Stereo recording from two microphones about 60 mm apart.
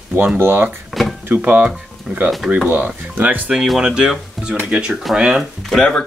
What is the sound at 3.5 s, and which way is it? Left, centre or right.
Speech, centre.